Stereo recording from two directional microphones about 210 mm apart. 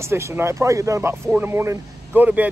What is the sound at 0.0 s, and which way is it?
Speech, 15° right (ahead or behind).